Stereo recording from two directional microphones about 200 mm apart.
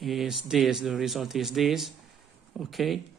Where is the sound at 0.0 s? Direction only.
Centre (ahead or behind).